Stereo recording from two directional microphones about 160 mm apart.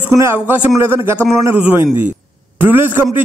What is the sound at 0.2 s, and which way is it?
A man's voice, 15° right (ahead or behind).